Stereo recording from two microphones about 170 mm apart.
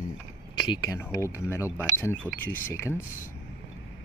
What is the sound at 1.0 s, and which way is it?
Speech, 15° left (ahead or behind).